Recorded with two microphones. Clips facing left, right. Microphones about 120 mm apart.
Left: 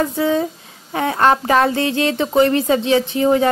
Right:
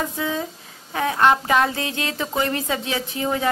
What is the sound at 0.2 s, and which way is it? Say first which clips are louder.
A woman's voice: left 8 dB; 35° left (ahead or behind).